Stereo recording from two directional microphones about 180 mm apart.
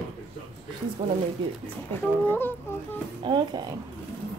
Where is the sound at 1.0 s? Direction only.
25° right (ahead or behind).